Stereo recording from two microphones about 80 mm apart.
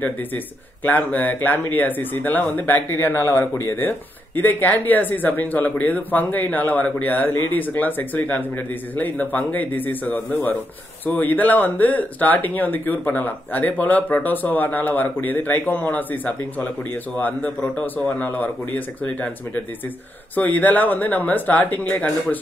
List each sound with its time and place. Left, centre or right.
0.8 s speech: left
17.7 s speech: left
20.3 s speech: left